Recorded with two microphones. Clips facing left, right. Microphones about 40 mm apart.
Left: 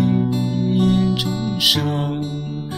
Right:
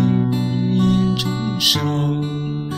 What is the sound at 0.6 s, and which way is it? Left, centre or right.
Music, centre.